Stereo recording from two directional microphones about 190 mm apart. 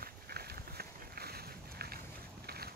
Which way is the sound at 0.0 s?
55° right (ahead or behind).